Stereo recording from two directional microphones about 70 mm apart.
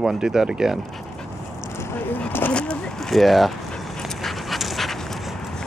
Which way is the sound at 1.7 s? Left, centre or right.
Left.